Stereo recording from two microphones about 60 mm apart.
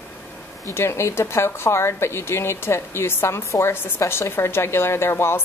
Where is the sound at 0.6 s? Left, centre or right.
Left.